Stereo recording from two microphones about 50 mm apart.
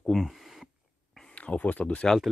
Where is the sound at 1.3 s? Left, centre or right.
Left.